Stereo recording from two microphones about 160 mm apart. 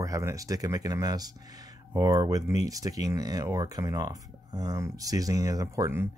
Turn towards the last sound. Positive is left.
turn(degrees=-15)  # may be behind; listen again after turning